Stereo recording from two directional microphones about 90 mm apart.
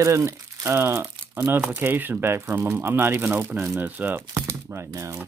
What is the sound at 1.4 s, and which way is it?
Speech, 15° right (ahead or behind).